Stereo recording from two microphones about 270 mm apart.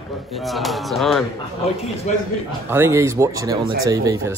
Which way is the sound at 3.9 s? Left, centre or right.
Centre.